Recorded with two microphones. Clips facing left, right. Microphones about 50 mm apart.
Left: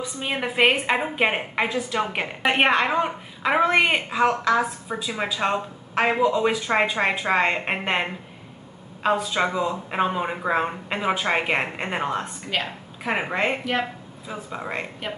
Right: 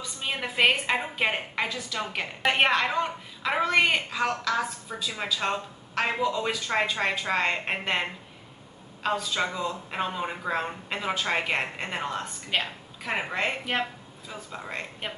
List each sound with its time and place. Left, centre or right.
0.0 s a woman's voice: centre